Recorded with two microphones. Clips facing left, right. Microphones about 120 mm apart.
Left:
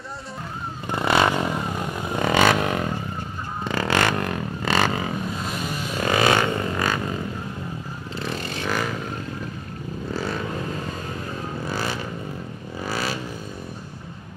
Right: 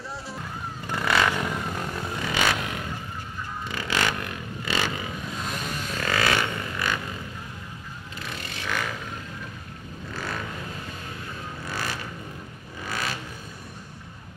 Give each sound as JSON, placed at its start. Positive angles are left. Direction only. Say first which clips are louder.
{"t": 0.8, "sound": "vehicle", "louder": "left 4 dB", "side_deg": 25}
{"t": 2.1, "sound": "vehicle", "louder": "left 8 dB", "side_deg": 50}
{"t": 5.4, "sound": "vehicle", "louder": "left 3 dB", "side_deg": 5}
{"t": 6.0, "sound": "vehicle", "louder": "left 6 dB", "side_deg": 25}
{"t": 6.3, "sound": "a sound", "louder": "left 6 dB", "side_deg": 40}
{"t": 8.2, "sound": "vehicle", "louder": "left 8 dB", "side_deg": 35}
{"t": 11.7, "sound": "vehicle", "louder": "left 3 dB", "side_deg": 30}